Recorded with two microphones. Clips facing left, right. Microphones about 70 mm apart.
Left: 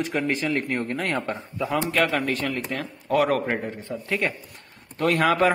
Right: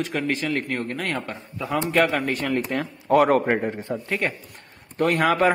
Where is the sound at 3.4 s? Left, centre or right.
Right.